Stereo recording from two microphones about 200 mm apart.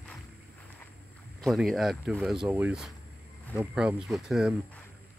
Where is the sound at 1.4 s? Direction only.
Centre (ahead or behind).